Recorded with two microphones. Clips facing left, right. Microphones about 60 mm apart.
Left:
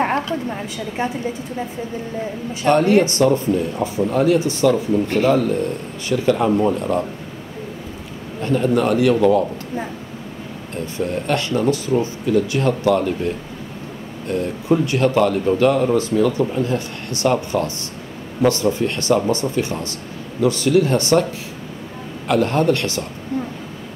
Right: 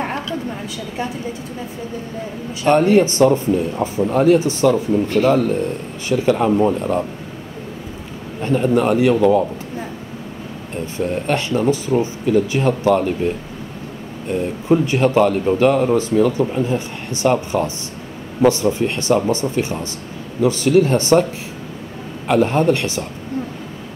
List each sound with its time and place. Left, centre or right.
0.0 s a sound: left
0.5 s a woman's voice: left
2.6 s speech: right
6.0 s speech: right
6.3 s speech: centre
8.4 s a man's voice: right
11.0 s speech: right
14.3 s speech: centre
22.3 s speech: centre